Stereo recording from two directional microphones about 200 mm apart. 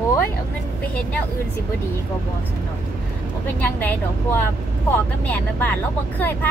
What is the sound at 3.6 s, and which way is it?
Speech, 10° left (ahead or behind).